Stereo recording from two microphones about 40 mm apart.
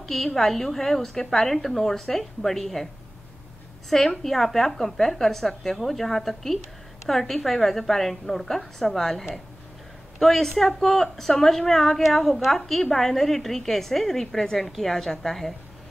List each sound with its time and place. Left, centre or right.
0.0 s a woman's voice: centre
3.9 s a woman's voice: centre